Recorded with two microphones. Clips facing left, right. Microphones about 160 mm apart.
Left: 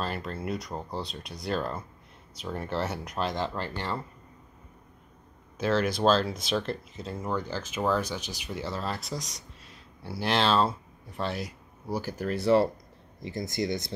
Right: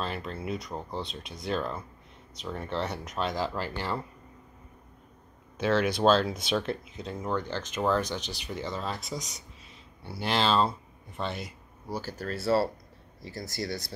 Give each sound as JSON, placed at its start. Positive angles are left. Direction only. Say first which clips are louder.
{"t": 0.0, "sound": "speech", "louder": "left 1 dB", "side_deg": 0}
{"t": 5.6, "sound": "speech", "louder": "right 1 dB", "side_deg": 0}
{"t": 11.9, "sound": "speech", "louder": "left 4 dB", "side_deg": 15}